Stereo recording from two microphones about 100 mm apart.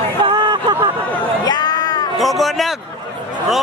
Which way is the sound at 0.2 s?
50° right (ahead or behind).